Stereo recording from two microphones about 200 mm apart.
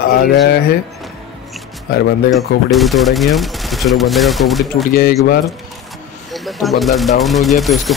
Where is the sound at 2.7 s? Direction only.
Centre (ahead or behind).